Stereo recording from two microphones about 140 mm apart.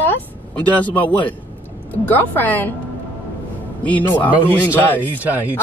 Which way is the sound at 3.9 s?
10° left (ahead or behind).